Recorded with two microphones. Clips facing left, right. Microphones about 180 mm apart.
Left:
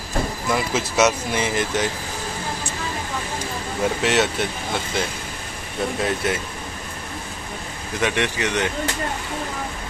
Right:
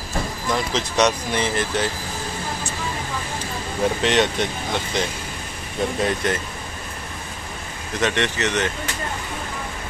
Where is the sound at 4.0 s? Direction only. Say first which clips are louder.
Right 1 dB; 5° left (ahead or behind).